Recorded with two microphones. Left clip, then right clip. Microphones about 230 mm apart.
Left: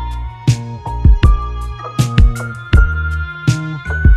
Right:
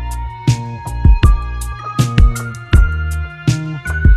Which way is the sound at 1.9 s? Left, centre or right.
Centre.